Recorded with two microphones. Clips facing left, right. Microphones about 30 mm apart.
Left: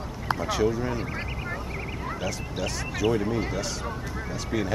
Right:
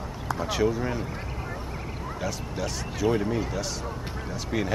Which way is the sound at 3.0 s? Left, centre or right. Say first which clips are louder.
Even; left.